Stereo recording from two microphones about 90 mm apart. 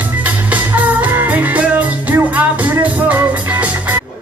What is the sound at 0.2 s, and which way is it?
Music, 15° right (ahead or behind).